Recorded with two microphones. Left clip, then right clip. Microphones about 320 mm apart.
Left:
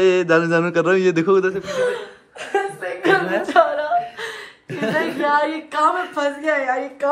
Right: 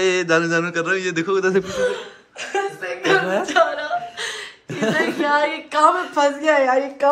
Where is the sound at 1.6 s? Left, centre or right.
Left.